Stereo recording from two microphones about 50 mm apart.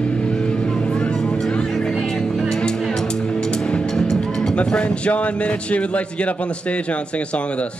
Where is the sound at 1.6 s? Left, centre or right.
Centre.